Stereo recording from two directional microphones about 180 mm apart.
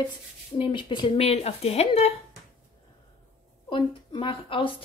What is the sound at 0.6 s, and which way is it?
Speech, 25° left (ahead or behind).